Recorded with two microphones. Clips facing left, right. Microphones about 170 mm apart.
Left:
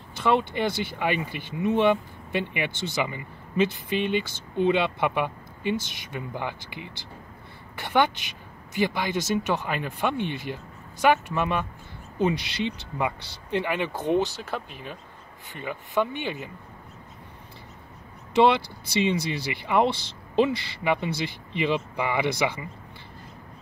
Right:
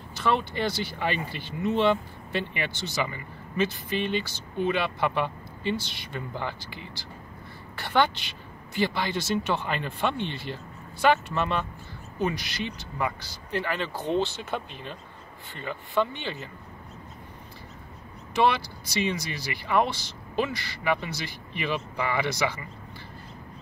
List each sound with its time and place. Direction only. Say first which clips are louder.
0.2 s speech: left 3 dB; 20° left (ahead or behind)
18.3 s speech: left 4 dB; 20° left (ahead or behind)